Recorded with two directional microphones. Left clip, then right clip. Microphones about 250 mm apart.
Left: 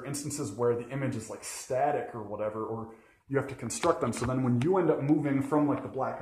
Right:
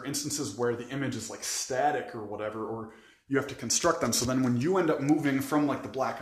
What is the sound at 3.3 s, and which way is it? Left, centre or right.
Speech, centre.